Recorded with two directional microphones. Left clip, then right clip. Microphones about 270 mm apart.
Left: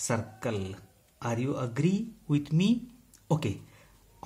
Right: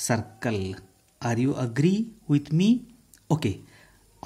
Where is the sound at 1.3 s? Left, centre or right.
Right.